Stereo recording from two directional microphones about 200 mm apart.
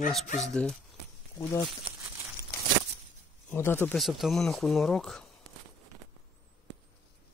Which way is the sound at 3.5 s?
10° left (ahead or behind).